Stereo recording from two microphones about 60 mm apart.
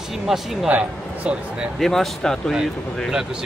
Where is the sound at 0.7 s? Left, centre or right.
Right.